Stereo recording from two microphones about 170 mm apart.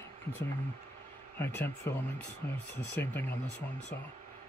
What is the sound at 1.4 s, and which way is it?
Speech, 10° left (ahead or behind).